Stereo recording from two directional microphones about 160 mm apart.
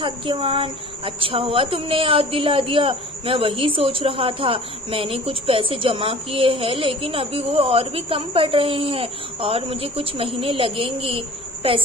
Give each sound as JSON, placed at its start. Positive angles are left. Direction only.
{"t": 0.0, "sound": "a woman's voice", "side_deg": -30}